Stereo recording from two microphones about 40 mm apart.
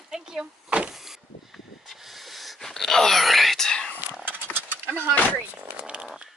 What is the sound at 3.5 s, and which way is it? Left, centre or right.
Whispering, centre.